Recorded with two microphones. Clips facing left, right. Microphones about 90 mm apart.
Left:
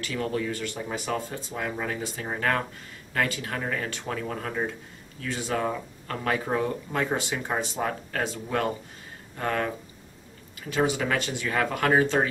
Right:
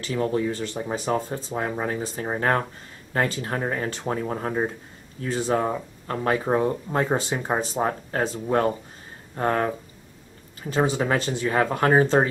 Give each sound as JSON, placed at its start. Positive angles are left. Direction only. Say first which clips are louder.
{"t": 0.0, "sound": "speech", "louder": "right 5 dB", "side_deg": -30}